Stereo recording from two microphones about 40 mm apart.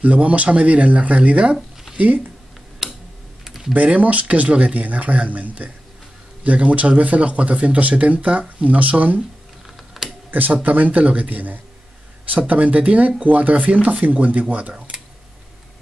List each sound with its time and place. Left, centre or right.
0.0 s speech: right
2.8 s tick-tock: centre
3.4 s typing: centre
3.7 s speech: right
9.9 s computer keyboard: centre
10.3 s speech: right